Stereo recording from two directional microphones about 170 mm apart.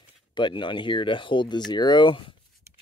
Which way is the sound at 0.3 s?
25° left (ahead or behind).